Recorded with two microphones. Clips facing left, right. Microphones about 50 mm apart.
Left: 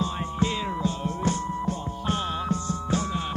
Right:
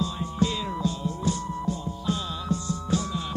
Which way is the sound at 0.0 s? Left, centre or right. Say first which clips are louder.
Even; left.